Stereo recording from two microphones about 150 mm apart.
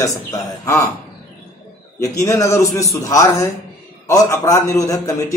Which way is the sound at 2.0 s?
20° left (ahead or behind).